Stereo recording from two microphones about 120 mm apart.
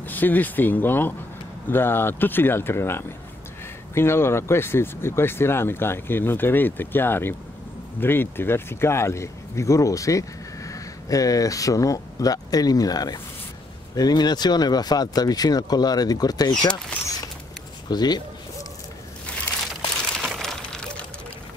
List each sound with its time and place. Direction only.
0.0 s speech: 15° left (ahead or behind); by 16.7 s 35° left (ahead or behind)
17.8 s speech: 35° left (ahead or behind)
19.7 s crumpling: centre (ahead or behind)